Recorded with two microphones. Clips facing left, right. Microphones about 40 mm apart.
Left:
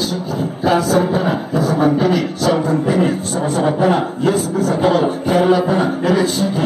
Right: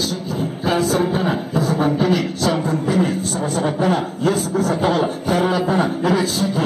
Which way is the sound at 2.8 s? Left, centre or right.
Centre.